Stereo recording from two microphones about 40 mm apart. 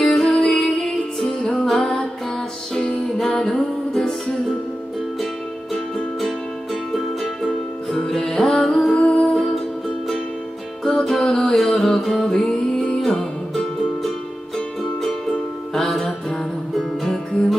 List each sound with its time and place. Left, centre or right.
0.0 s music: centre
5.9 s music: centre
7.4 s music: centre
8.9 s music: left
10.8 s music: centre